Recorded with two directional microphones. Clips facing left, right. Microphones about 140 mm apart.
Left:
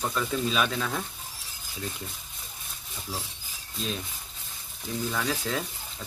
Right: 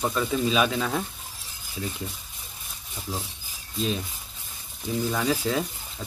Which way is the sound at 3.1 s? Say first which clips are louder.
Right 3 dB; 25° right (ahead or behind).